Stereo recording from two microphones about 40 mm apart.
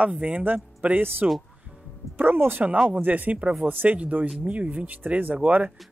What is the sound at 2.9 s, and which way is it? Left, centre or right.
Speech, right.